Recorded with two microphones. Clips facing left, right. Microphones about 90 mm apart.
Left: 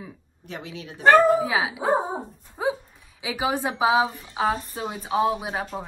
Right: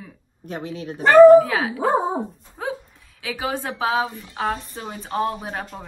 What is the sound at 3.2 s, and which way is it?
A woman's voice, 15° left (ahead or behind).